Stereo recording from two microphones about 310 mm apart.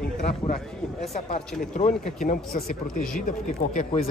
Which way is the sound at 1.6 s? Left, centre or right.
Left.